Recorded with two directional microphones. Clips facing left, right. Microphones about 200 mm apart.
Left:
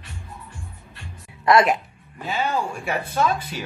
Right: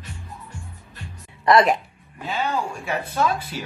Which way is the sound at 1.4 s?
Centre (ahead or behind).